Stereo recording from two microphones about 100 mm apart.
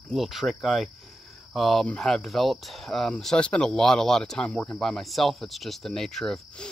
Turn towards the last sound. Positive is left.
turn(degrees=10)  # may be behind; listen again after turning